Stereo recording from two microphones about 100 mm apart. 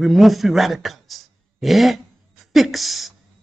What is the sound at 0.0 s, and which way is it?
A woman's voice, centre (ahead or behind).